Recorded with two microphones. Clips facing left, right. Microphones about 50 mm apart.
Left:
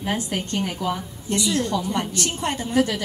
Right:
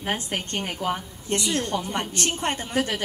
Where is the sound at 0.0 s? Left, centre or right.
Right.